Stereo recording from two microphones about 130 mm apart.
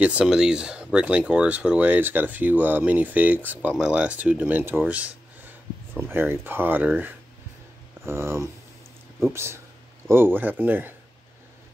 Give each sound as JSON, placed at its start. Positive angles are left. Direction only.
{"t": 0.0, "sound": "speech", "side_deg": -10}